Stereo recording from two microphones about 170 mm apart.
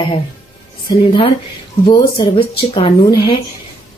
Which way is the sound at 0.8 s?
30° left (ahead or behind).